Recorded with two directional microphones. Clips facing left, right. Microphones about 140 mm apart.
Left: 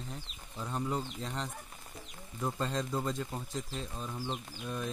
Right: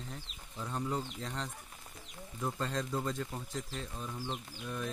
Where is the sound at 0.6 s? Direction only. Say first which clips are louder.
Left 1 dB; 15° left (ahead or behind).